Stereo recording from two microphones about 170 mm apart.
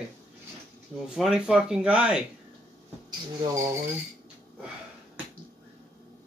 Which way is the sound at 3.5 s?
20° right (ahead or behind).